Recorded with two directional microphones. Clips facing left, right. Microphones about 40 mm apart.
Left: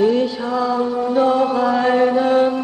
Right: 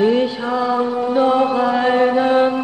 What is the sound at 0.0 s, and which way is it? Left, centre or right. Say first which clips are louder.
Chant: right 1 dB; right.